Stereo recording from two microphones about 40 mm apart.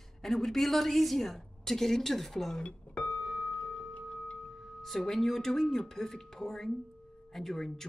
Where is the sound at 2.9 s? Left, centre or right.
Centre.